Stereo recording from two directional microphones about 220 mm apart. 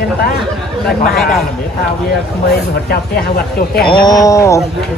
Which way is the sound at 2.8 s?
45° left (ahead or behind).